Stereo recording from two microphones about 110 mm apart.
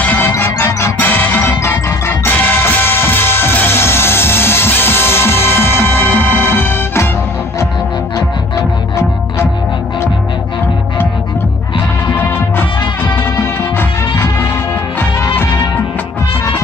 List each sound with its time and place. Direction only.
0.0 s music: 15° left (ahead or behind)
0.3 s music: 25° left (ahead or behind)
0.9 s music: 15° left (ahead or behind)
8.5 s music: 25° left (ahead or behind)